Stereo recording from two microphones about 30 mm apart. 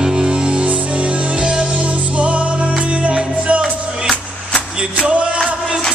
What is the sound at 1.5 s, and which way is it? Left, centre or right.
Music, right.